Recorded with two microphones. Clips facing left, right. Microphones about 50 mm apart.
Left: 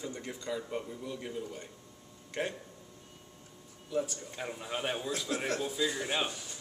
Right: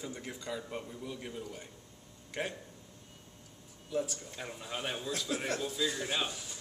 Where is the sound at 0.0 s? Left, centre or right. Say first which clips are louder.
Left 2 dB; centre.